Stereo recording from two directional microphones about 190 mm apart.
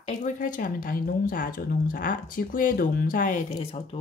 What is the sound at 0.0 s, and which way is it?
Speech, 40° left (ahead or behind).